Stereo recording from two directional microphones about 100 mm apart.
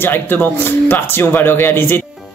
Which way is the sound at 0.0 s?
20° left (ahead or behind).